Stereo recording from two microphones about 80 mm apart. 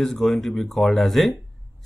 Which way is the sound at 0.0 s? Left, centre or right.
Centre.